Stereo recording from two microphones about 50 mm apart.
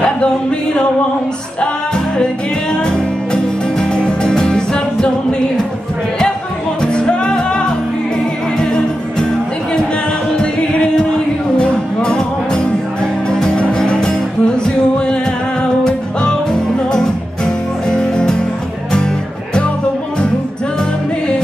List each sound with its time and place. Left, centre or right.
0.0 s music: centre
2.7 s music: centre
6.8 s music: centre
10.3 s music: centre
17.5 s music: centre